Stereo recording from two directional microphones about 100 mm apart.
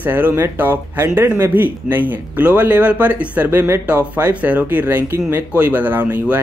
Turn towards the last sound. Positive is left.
turn(degrees=-15)  # may be behind; listen again after turning